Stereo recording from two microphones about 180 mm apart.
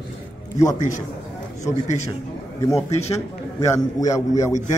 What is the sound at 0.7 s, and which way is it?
Speech, 45° left (ahead or behind).